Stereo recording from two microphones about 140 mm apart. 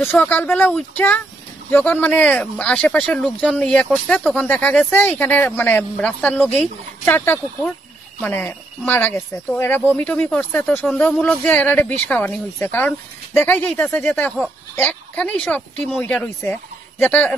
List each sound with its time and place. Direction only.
0.2 s speech: 15° left (ahead or behind)